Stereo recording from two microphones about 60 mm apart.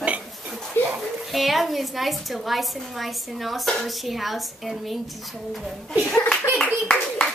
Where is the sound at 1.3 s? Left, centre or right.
Centre.